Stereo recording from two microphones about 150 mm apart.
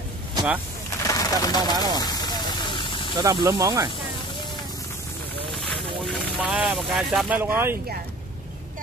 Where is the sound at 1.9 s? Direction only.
25° left (ahead or behind).